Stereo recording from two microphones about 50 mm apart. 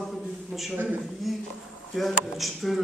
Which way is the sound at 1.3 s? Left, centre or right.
Centre.